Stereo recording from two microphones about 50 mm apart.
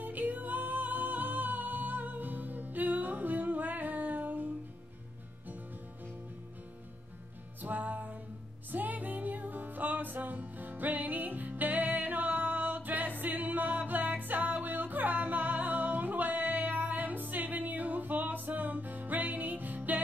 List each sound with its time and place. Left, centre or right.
0.0 s music: right
7.6 s music: right